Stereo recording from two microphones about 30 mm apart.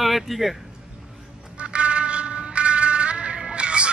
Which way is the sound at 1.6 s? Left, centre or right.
Right.